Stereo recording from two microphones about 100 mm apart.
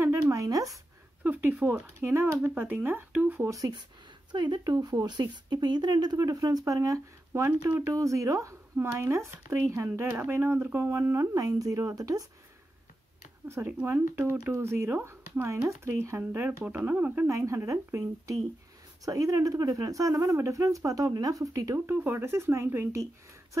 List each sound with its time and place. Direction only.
0.0 s a sound: 30° right (ahead or behind)
1.2 s a sound: 15° right (ahead or behind)
2.4 s speech: 20° right (ahead or behind)
3.4 s speech: 35° right (ahead or behind)
4.3 s speech: 45° right (ahead or behind)
13.5 s speech: 15° right (ahead or behind)
17.3 s speech: 30° right (ahead or behind)
21.9 s speech: 20° right (ahead or behind)